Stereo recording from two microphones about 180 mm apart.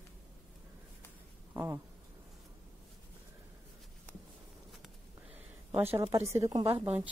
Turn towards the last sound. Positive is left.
turn(degrees=-25)  # may be behind; listen again after turning